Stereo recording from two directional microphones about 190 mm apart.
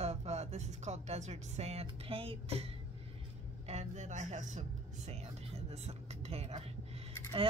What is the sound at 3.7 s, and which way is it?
Speech, 35° right (ahead or behind).